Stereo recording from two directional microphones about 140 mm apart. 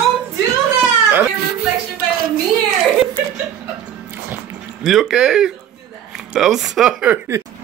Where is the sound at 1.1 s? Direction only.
15° right (ahead or behind).